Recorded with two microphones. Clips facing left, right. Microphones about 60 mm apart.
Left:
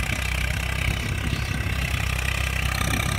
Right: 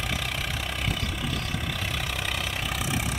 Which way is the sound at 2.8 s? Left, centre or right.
Left.